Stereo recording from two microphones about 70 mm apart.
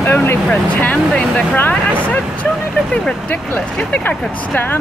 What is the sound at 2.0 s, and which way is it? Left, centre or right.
Speech, left.